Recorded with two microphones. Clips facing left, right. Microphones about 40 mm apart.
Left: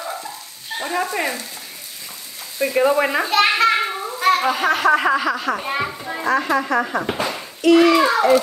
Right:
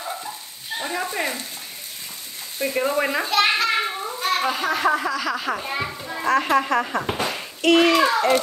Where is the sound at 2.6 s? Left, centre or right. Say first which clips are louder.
Left 4 dB; left.